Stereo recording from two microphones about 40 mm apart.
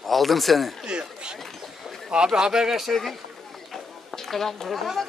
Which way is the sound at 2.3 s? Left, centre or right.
Centre.